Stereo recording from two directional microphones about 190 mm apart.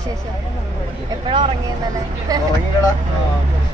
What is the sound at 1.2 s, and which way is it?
Speech, 25° right (ahead or behind).